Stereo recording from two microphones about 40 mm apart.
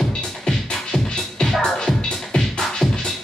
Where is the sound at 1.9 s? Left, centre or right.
Left.